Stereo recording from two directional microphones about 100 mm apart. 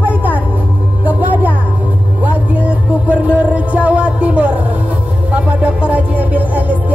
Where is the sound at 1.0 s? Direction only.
20° right (ahead or behind).